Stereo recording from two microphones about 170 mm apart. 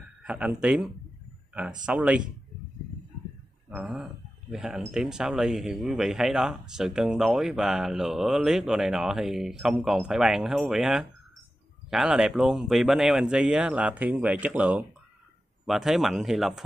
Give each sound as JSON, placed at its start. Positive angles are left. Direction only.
{"t": 0.2, "sound": "speech", "side_deg": -5}
{"t": 3.7, "sound": "speech", "side_deg": -5}